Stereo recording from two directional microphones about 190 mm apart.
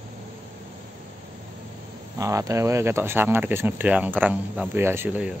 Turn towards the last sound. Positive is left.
turn(degrees=-5)  # may be behind; listen again after turning